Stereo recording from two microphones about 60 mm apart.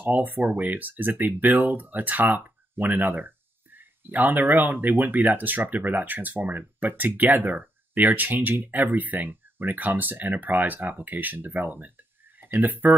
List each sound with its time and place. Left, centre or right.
0.0 s speech: right